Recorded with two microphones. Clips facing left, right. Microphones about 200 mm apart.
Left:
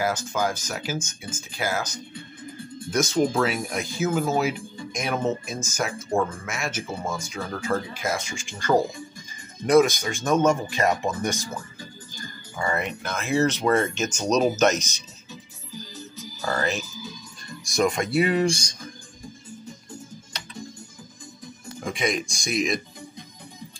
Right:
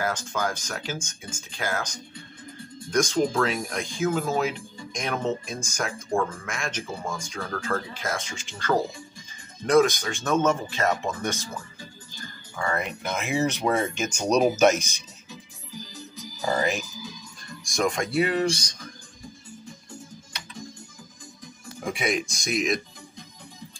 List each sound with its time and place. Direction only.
0.0 s speech: 10° left (ahead or behind)
12.5 s speech: 5° left (ahead or behind)
13.0 s speech: 20° right (ahead or behind)
16.3 s speech: 15° right (ahead or behind)
17.6 s speech: 5° left (ahead or behind)
21.7 s speech: 5° right (ahead or behind)